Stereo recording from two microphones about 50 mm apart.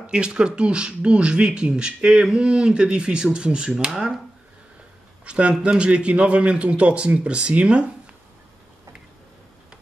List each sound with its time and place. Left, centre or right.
0.0 s speech: centre
5.2 s speech: right